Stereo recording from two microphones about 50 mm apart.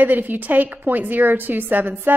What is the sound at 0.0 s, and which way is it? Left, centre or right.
A woman's voice, right.